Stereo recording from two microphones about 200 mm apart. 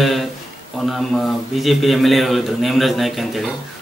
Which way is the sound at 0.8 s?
Centre (ahead or behind).